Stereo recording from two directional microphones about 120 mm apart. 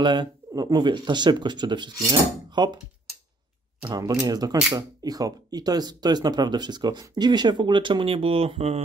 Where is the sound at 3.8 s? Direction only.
30° right (ahead or behind).